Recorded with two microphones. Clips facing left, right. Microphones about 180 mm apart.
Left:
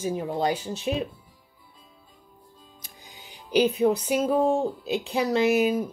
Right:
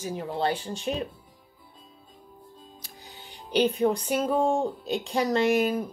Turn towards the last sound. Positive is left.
turn(degrees=5)  # may be behind; listen again after turning